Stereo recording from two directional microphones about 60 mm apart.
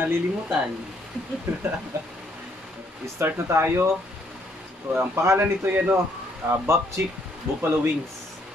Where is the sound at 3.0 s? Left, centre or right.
Right.